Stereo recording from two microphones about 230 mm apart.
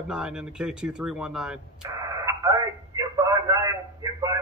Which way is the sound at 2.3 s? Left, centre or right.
Centre.